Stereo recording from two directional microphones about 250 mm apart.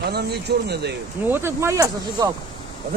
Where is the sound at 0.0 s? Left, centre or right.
Right.